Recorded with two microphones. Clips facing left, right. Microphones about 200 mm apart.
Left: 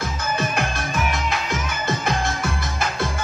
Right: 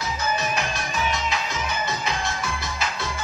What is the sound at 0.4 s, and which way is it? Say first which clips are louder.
Music: left 3 dB; 55° left (ahead or behind).